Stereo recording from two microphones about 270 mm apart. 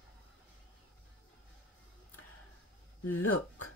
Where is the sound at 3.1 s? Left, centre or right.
Left.